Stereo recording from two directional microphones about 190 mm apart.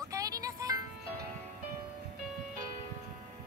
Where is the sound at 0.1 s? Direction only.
20° right (ahead or behind).